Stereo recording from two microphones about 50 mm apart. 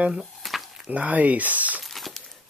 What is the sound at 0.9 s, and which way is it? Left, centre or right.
Speech, right.